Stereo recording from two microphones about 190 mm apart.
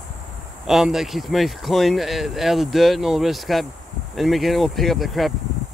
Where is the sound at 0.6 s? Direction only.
Centre (ahead or behind).